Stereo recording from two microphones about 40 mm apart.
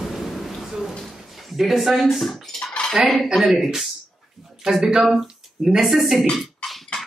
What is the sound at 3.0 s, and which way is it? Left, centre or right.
Speech, right.